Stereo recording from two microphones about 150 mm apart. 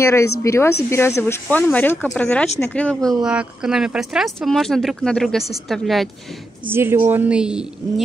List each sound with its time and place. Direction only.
0.0 s speech: 20° left (ahead or behind)
3.3 s speech: 5° right (ahead or behind)
6.7 s a woman's voice: 15° right (ahead or behind)